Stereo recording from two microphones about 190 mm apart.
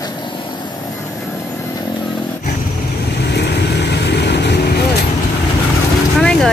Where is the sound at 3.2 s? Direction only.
60° left (ahead or behind).